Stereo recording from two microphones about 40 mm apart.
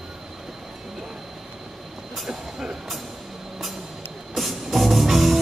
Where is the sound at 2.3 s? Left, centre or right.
Centre.